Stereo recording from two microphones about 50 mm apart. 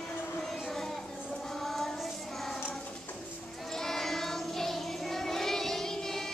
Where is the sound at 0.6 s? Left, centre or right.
Centre.